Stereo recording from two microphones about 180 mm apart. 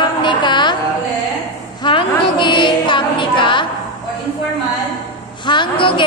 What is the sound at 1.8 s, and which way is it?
Music, 25° left (ahead or behind).